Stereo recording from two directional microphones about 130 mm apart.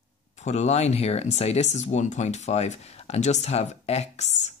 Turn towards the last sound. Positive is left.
turn(degrees=60)  # may be behind; listen again after turning